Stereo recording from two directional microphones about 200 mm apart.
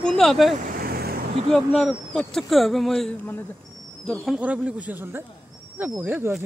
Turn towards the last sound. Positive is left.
turn(degrees=-10)  # may be behind; listen again after turning